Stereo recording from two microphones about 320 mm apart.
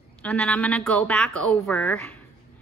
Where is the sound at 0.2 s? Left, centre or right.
Centre.